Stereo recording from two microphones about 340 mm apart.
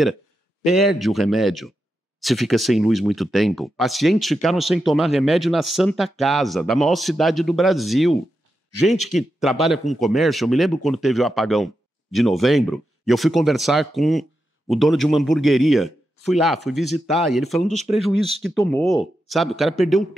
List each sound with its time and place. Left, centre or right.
0.7 s speech: centre